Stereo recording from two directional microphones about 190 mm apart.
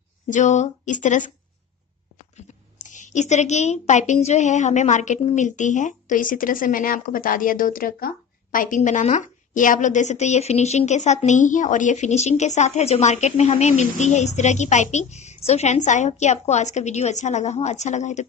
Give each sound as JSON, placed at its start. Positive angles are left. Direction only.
{"t": 0.3, "sound": "a woman's voice", "side_deg": 40}